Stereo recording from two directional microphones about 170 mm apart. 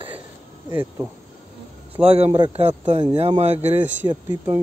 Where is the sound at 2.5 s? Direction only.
40° right (ahead or behind).